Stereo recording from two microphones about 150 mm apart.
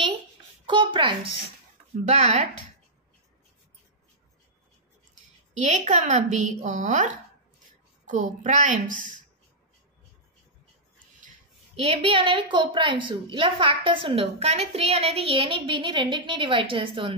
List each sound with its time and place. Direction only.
0.7 s a woman's voice: 30° right (ahead or behind)
2.0 s a woman's voice: 50° right (ahead or behind)
5.6 s a woman's voice: 55° right (ahead or behind)
8.1 s a woman's voice: 60° right (ahead or behind)
11.8 s a woman's voice: 40° right (ahead or behind)